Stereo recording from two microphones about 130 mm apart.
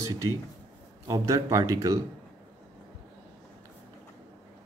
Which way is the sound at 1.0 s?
25° right (ahead or behind).